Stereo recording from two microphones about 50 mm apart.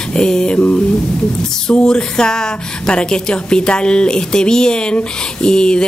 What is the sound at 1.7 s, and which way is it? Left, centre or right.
Speech, centre.